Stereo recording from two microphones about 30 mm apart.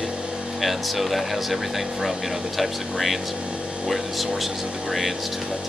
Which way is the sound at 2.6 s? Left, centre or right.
Centre.